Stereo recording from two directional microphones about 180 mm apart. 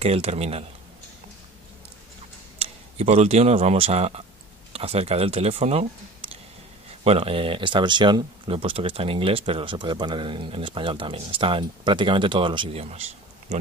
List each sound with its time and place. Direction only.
0.0 s speech: 35° right (ahead or behind)
3.0 s speech: 35° right (ahead or behind)
7.1 s speech: 30° right (ahead or behind)